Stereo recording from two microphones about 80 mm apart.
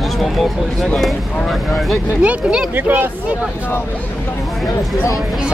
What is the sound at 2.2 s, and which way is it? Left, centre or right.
Speech, centre.